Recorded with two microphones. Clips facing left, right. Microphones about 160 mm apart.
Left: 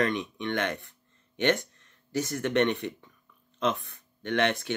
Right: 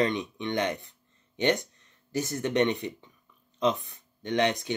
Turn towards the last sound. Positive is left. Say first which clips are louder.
# right 1 dB
turn(degrees=-15)  # may be behind; listen again after turning